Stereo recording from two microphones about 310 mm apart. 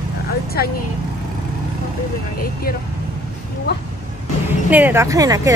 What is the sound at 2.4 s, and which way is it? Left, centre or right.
Speech, left.